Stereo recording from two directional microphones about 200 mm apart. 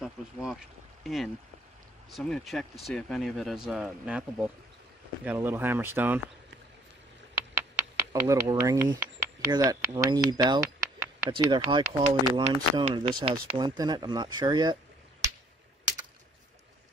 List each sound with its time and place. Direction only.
0.0 s speech: centre (ahead or behind)
7.5 s a sound: 15° right (ahead or behind)
9.5 s speech: 15° right (ahead or behind)
11.7 s speech: 35° right (ahead or behind)
12.4 s speech: 25° right (ahead or behind)